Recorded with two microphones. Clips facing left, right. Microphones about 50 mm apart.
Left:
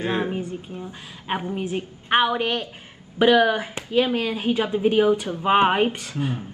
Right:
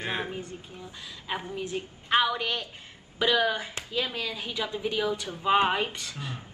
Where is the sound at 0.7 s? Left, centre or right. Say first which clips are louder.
Left 6 dB; left.